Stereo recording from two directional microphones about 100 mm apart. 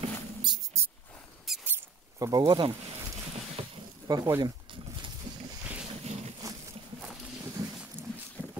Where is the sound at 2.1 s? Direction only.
35° right (ahead or behind).